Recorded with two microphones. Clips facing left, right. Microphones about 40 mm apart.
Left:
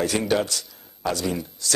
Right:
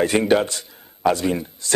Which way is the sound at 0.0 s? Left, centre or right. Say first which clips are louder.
Right 5 dB; right.